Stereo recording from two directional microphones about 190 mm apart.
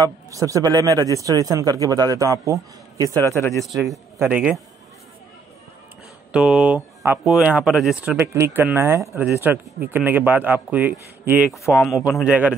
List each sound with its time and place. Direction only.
0.0 s a man's voice: 15° right (ahead or behind)
3.2 s speech: 15° left (ahead or behind)
3.5 s speech: centre (ahead or behind)
6.3 s speech: 5° right (ahead or behind)
8.3 s speech: 15° right (ahead or behind)